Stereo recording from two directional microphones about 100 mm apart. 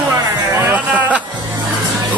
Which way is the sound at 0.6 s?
20° right (ahead or behind).